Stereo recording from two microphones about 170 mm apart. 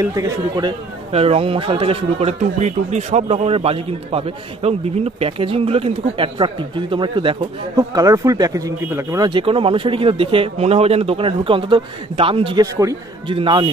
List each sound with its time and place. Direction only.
0.0 s speech: 20° right (ahead or behind)
1.1 s speech: 35° right (ahead or behind); by 9.3 s 15° right (ahead or behind)
9.3 s speech: 30° right (ahead or behind)
12.7 s speech: 20° right (ahead or behind)